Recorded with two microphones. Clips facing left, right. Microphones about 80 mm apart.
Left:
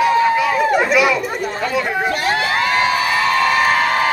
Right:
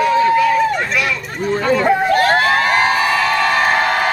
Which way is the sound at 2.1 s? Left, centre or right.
Right.